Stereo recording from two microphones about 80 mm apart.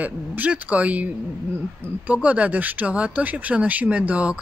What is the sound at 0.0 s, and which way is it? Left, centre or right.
Speech, centre.